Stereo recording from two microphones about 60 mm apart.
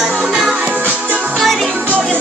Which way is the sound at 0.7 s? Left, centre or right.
Right.